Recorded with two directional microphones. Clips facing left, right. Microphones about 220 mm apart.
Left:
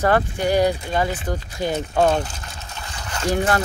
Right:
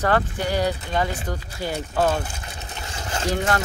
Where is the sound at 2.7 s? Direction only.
25° right (ahead or behind).